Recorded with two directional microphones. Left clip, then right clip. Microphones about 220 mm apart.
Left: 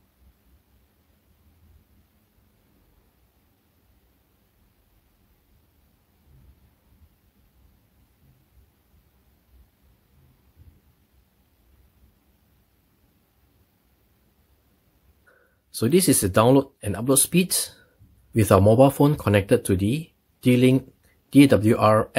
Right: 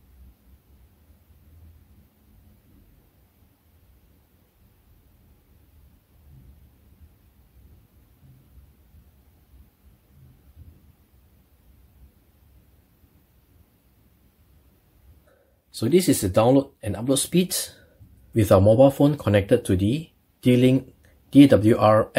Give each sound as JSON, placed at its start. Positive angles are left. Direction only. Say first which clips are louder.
{"t": 15.7, "sound": "speech", "louder": "even", "side_deg": 25}